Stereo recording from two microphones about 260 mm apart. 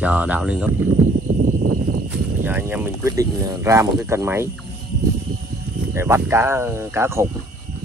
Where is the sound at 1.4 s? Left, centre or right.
Right.